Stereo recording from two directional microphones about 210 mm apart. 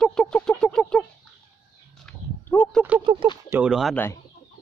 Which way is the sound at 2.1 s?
5° left (ahead or behind).